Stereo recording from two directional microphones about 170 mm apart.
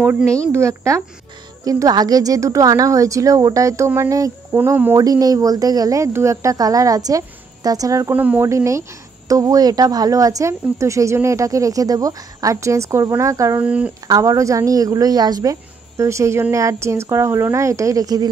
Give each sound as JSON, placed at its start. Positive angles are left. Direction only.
{"t": 0.0, "sound": "speech", "side_deg": -15}
{"t": 13.7, "sound": "speech", "side_deg": -10}
{"t": 14.0, "sound": "speech", "side_deg": -20}